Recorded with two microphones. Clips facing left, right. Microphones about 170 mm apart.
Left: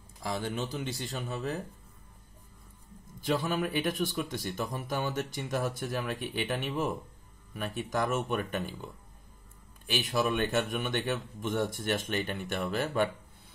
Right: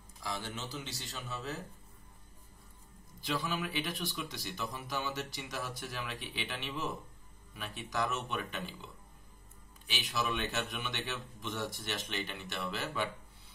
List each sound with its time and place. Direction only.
0.2 s speech: 55° left (ahead or behind)
3.2 s speech: 50° left (ahead or behind)